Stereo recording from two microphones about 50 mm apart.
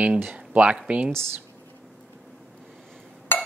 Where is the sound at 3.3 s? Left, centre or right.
Left.